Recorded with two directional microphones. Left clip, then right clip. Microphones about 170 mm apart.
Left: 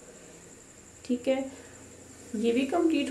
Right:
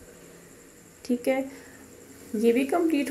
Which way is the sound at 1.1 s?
15° right (ahead or behind).